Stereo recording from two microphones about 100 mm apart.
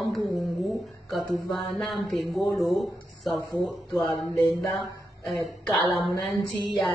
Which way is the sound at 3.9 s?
Centre (ahead or behind).